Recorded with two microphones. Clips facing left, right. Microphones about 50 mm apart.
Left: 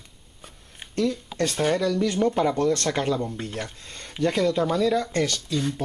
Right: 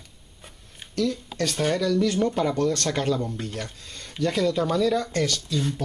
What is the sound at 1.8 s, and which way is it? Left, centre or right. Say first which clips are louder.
Speech: even; centre.